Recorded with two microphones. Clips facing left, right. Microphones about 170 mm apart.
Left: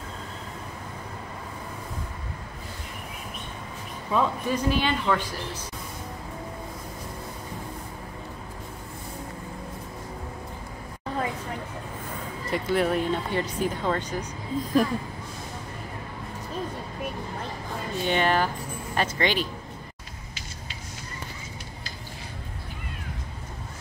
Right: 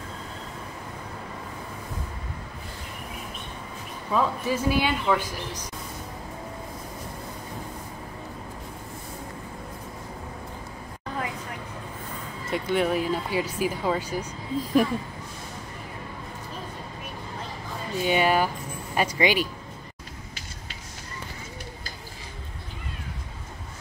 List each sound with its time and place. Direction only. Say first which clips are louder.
4.1 s speech: even; 5° right (ahead or behind)
12.4 s speech: even; centre (ahead or behind)
18.0 s speech: right 2 dB; 10° right (ahead or behind)